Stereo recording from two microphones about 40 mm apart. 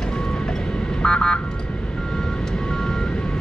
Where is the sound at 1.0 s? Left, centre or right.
Centre.